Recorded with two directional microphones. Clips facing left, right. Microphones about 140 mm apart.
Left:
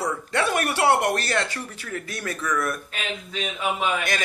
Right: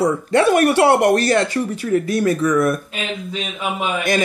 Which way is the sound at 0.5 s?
45° right (ahead or behind).